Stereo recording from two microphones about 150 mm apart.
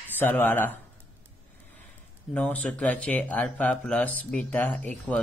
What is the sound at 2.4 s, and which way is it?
Speech, 10° left (ahead or behind).